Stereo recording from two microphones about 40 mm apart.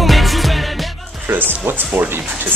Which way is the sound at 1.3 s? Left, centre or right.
Right.